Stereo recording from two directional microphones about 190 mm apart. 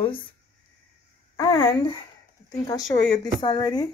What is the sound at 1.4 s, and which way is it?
Speech, 25° left (ahead or behind).